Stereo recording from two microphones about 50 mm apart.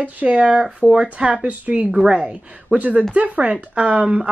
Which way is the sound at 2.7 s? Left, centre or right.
Right.